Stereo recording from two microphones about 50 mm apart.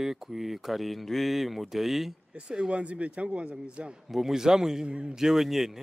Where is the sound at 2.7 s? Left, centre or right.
Right.